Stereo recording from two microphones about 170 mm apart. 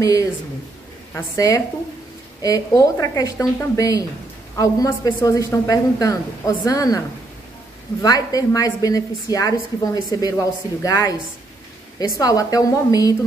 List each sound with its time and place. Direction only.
0.0 s a woman's voice: 20° left (ahead or behind)
8.0 s a woman's voice: 20° left (ahead or behind)
12.2 s a woman's voice: 20° left (ahead or behind)